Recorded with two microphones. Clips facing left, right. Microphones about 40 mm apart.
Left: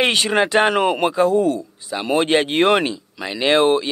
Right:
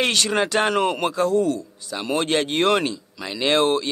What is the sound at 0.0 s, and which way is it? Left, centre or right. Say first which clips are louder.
Speech: left 4 dB; left.